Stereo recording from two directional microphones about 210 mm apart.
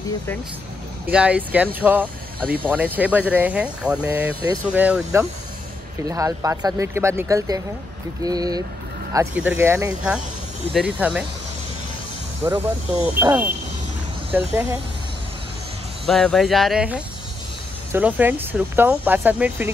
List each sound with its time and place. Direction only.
1.1 s speech: 5° right (ahead or behind)
12.4 s speech: 15° right (ahead or behind)
16.1 s speech: centre (ahead or behind)